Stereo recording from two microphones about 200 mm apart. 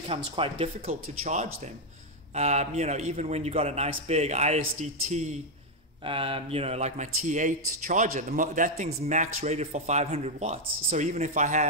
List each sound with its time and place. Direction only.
0.1 s a man's voice: 25° right (ahead or behind)